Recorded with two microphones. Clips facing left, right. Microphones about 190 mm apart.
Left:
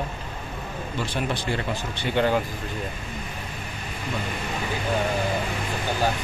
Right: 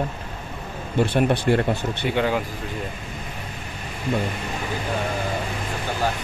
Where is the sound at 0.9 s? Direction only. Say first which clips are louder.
Right 9 dB; 60° right (ahead or behind).